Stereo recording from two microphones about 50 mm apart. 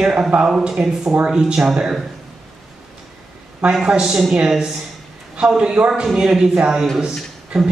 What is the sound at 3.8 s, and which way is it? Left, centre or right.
Speech, centre.